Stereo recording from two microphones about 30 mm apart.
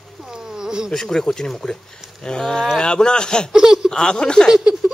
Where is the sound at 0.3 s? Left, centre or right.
Right.